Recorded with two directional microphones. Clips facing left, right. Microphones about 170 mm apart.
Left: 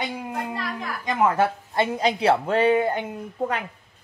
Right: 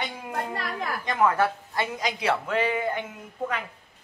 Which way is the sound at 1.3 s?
25° left (ahead or behind).